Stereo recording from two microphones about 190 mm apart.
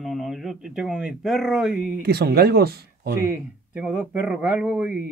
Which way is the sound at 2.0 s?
55° right (ahead or behind).